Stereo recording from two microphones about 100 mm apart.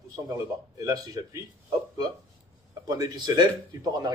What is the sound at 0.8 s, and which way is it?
Speech, 40° right (ahead or behind).